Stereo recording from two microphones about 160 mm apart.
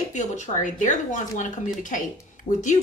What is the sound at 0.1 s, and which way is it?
Speech, 50° left (ahead or behind).